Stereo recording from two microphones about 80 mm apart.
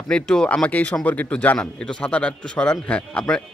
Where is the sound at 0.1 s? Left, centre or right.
Centre.